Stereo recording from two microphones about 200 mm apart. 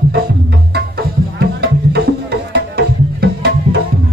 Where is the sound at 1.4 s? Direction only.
55° right (ahead or behind).